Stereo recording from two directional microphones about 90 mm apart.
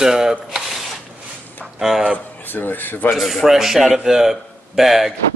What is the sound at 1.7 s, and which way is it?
Speech, 5° right (ahead or behind).